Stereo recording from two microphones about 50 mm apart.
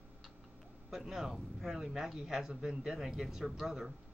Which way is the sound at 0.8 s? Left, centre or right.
Centre.